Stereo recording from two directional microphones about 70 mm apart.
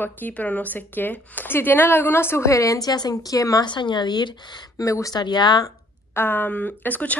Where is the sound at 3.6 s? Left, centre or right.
Left.